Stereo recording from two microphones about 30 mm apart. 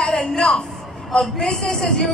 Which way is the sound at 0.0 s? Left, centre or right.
Centre.